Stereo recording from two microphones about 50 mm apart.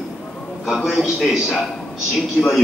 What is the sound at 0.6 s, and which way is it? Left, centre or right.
Speech, centre.